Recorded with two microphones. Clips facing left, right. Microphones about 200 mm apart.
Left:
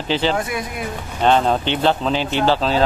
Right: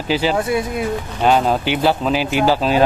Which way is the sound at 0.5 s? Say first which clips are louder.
Right 7 dB; 25° right (ahead or behind).